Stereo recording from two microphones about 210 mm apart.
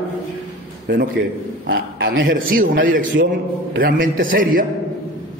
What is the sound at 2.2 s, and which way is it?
A man's voice, 40° right (ahead or behind).